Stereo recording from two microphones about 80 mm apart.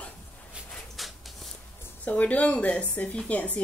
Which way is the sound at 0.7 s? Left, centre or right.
Centre.